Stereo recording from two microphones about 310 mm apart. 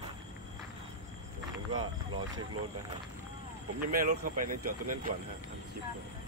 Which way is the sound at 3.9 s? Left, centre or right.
Right.